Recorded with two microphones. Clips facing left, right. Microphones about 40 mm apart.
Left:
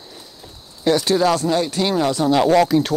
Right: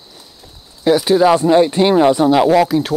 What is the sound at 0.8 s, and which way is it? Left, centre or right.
Speech, centre.